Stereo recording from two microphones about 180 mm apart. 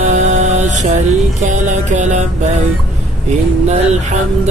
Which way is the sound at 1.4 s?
40° right (ahead or behind).